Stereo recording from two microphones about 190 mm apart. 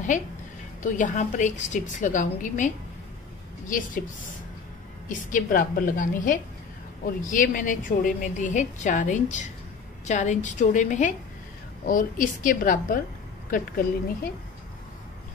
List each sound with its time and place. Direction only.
0.8 s a woman's voice: 45° left (ahead or behind)
5.0 s a woman's voice: 45° left (ahead or behind)